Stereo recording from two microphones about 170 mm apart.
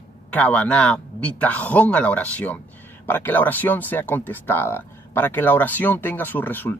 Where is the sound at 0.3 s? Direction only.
10° left (ahead or behind).